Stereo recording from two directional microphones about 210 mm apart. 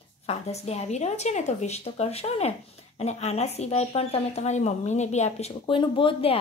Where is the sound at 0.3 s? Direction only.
30° left (ahead or behind).